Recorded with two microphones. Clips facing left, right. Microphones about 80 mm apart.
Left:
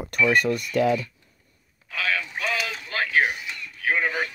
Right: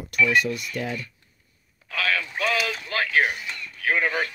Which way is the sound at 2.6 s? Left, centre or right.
Left.